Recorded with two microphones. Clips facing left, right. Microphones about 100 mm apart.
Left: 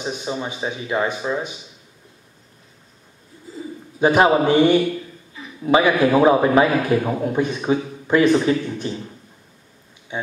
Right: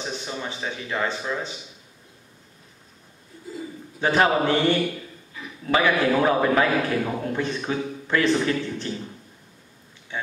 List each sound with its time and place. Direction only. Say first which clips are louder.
0.0 s a man's voice: left 5 dB; 20° left (ahead or behind)
4.0 s a man's voice: left 5 dB; 15° left (ahead or behind)
10.1 s a man's voice: left 4 dB; 15° left (ahead or behind)